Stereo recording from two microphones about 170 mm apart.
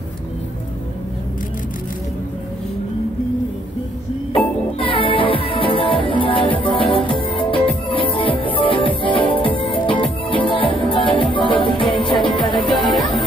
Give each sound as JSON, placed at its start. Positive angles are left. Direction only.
{"t": 4.3, "sound": "music", "side_deg": 30}